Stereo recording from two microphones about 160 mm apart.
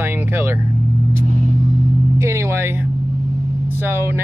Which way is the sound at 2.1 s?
15° right (ahead or behind).